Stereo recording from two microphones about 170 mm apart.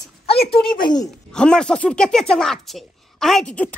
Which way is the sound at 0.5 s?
30° left (ahead or behind).